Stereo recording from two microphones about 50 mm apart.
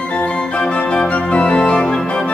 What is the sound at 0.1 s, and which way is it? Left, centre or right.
Organ, left.